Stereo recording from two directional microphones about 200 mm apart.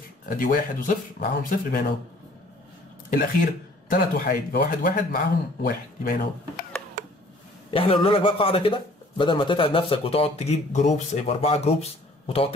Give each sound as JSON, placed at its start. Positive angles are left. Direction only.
{"t": 0.4, "sound": "speech", "side_deg": 45}
{"t": 3.1, "sound": "speech", "side_deg": 50}
{"t": 7.7, "sound": "a man's voice", "side_deg": 25}